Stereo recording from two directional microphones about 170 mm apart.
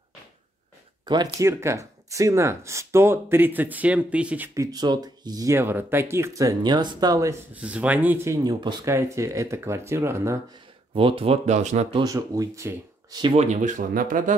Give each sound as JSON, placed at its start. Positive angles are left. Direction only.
{"t": 1.0, "sound": "speech", "side_deg": -25}
{"t": 4.6, "sound": "speech", "side_deg": -20}
{"t": 7.5, "sound": "speech", "side_deg": -10}
{"t": 11.0, "sound": "speech", "side_deg": -30}
{"t": 12.0, "sound": "speech", "side_deg": -20}
{"t": 13.3, "sound": "speech", "side_deg": -40}